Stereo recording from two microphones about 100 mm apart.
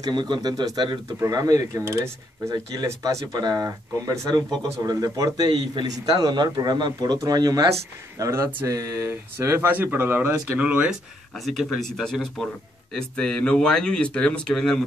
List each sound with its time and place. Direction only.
0.0 s a man's voice: 50° right (ahead or behind); by 4.3 s 30° right (ahead or behind)
4.3 s a man's voice: 45° right (ahead or behind)
8.2 s speech: 25° right (ahead or behind)
8.6 s speech: 35° right (ahead or behind); by 11.0 s 10° right (ahead or behind)
11.3 s speech: centre (ahead or behind)